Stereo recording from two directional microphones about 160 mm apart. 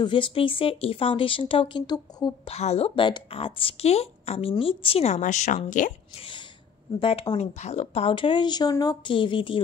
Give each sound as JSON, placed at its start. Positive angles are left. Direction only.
{"t": 0.0, "sound": "a woman's voice", "side_deg": 30}
{"t": 2.5, "sound": "a woman's voice", "side_deg": 40}
{"t": 6.1, "sound": "a woman's voice", "side_deg": 35}